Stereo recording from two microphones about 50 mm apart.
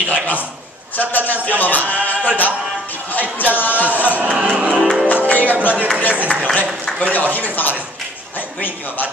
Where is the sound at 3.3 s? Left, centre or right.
Left.